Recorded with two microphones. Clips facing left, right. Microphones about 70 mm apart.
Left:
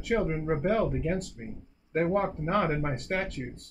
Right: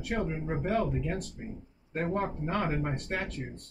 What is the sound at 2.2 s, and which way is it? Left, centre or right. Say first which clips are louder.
Speech: left 4 dB; left.